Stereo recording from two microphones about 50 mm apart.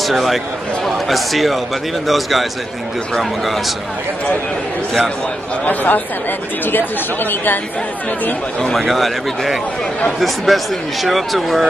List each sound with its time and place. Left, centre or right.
0.0 s speech: centre
5.7 s speech: left
8.7 s speech: centre